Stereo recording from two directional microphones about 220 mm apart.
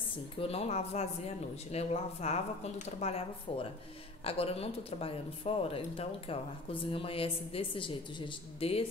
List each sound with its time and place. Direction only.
0.4 s speech: 25° left (ahead or behind)